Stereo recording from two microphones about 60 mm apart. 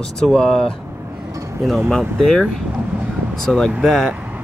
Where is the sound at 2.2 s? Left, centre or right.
Centre.